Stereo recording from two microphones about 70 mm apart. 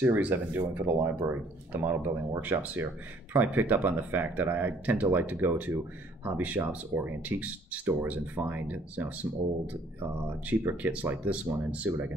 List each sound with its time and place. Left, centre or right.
0.0 s speech: right